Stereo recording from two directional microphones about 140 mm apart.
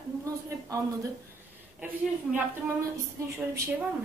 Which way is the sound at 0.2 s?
20° right (ahead or behind).